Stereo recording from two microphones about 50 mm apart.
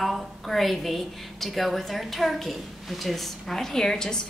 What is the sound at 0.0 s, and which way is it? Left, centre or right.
A woman's voice, centre.